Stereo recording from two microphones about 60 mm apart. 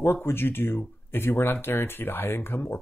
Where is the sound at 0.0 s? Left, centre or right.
Left.